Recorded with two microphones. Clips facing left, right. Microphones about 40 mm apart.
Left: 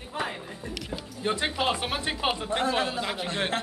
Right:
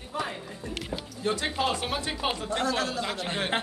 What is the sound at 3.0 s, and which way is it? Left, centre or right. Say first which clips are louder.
Speech: left 1 dB; centre.